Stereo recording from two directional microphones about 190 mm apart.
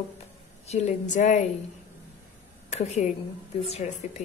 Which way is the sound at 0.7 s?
35° left (ahead or behind).